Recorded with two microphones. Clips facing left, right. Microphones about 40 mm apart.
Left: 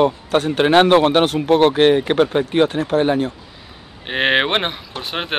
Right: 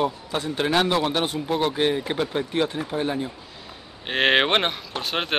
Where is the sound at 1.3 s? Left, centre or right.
Left.